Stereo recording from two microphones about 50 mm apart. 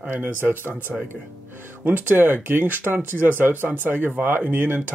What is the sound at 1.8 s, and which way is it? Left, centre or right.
Speech, right.